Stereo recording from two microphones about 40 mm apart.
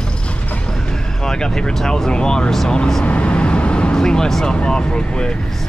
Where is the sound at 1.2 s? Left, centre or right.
Centre.